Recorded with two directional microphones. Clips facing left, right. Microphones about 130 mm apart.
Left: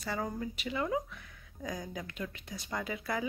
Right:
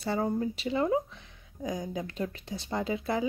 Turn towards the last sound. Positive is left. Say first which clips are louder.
# right 6 dB
turn(degrees=-25)  # may be behind; listen again after turning